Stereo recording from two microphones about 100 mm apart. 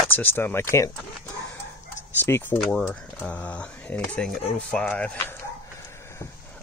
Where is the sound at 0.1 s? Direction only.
20° left (ahead or behind).